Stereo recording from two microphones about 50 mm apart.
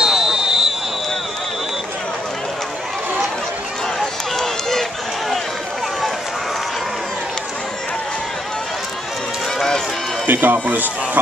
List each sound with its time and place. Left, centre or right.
0.0 s a sound: centre
4.0 s run: centre
10.2 s speech: right